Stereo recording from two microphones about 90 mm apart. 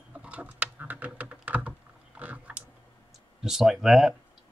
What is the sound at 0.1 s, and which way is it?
Typing, 15° right (ahead or behind).